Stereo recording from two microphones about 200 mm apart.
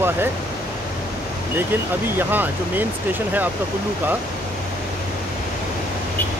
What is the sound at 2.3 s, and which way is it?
Speech, 10° right (ahead or behind).